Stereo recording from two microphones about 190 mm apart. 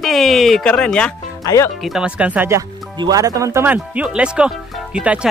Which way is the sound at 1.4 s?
15° left (ahead or behind).